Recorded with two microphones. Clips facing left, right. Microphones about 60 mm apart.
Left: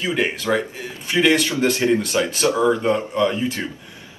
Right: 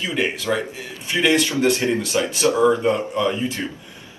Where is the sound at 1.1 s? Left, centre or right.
Centre.